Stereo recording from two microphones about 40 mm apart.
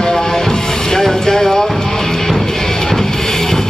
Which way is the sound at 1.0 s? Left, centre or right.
Centre.